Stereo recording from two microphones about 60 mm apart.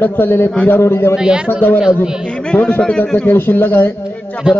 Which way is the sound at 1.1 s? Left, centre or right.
Centre.